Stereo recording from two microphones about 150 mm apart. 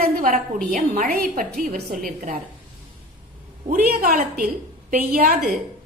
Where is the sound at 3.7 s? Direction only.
75° right (ahead or behind).